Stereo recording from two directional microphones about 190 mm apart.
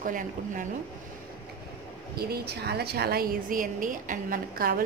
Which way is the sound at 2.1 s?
55° right (ahead or behind).